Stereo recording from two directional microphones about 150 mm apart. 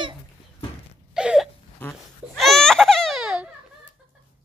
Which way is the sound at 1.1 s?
5° right (ahead or behind).